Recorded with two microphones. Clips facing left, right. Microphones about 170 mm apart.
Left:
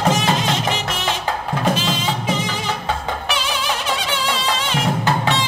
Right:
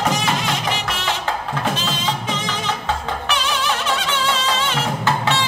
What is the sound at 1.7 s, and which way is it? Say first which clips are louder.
Music: left 3 dB; 10° left (ahead or behind).